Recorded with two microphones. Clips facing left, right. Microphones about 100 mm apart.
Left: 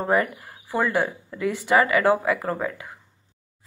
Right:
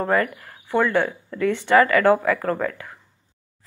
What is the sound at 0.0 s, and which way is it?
Speech, 25° left (ahead or behind).